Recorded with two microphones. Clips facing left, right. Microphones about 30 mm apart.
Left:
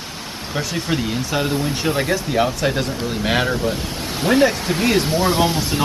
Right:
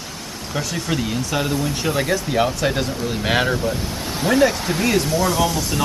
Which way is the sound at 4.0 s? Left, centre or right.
Left.